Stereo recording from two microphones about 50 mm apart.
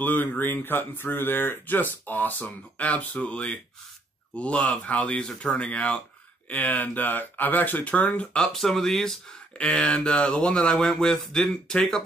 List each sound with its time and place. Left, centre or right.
0.0 s speech: left
8.5 s speech: centre
9.6 s speech: centre